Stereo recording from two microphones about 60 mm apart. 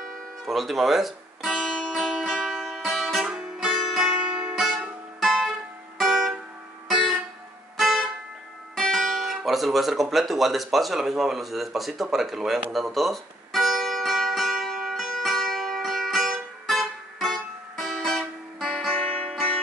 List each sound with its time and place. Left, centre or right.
0.5 s music: centre
4.6 s music: centre
8.7 s guitar: centre
18.9 s music: left